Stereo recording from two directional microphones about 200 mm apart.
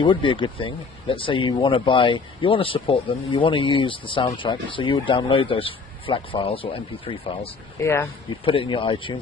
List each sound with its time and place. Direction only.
0.0 s speech: 25° left (ahead or behind)
7.8 s speech: 10° left (ahead or behind)
8.3 s speech: 25° left (ahead or behind)